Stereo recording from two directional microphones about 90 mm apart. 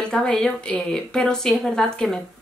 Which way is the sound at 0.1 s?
10° left (ahead or behind).